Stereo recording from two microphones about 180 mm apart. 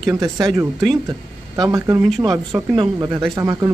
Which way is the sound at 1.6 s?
20° right (ahead or behind).